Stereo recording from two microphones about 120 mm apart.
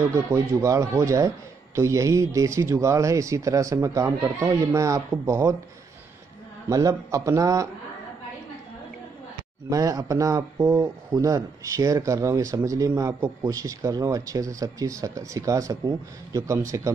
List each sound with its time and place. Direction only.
0.1 s speech: 25° right (ahead or behind)
6.7 s speech: 25° right (ahead or behind)
9.7 s speech: 30° right (ahead or behind)